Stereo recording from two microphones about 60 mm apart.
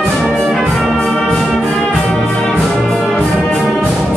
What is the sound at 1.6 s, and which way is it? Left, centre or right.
Brass instrument, centre.